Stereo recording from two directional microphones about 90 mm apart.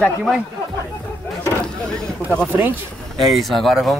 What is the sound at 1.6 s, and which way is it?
Speech, 10° left (ahead or behind).